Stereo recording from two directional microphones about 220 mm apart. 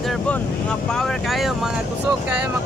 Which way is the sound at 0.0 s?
5° left (ahead or behind).